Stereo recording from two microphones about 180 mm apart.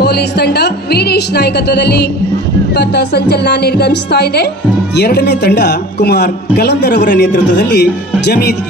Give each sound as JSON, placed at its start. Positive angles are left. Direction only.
{"t": 0.0, "sound": "a man's voice", "side_deg": 65}